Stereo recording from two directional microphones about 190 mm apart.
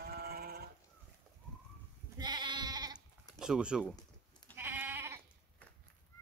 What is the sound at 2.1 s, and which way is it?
Goat, 20° right (ahead or behind).